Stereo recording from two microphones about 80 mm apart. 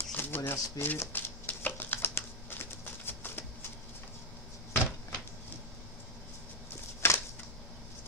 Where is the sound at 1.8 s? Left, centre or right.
Left.